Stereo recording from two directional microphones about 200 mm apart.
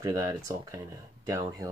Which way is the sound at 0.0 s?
15° right (ahead or behind).